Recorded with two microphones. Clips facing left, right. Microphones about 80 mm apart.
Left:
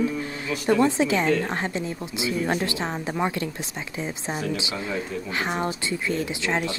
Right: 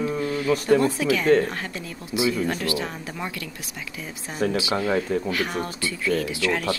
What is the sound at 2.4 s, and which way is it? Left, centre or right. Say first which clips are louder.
Speech: left 1 dB; left.